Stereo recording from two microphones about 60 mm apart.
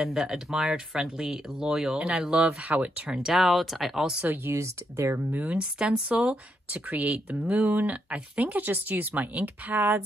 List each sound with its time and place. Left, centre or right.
0.0 s speech: centre
2.0 s speech: right
3.2 s speech: centre
4.2 s speech: right
4.6 s speech: right
5.5 s speech: right